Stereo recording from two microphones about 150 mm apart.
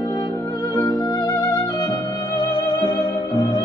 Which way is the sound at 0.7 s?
25° left (ahead or behind).